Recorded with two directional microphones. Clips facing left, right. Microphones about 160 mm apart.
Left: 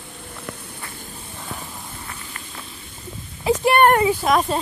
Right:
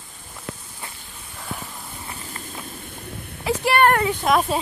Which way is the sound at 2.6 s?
50° right (ahead or behind).